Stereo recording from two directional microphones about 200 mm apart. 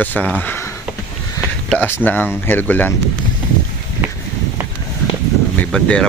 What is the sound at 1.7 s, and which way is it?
Speech, 10° left (ahead or behind).